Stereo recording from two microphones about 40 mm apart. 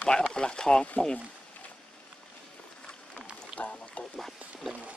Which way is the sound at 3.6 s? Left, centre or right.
Left.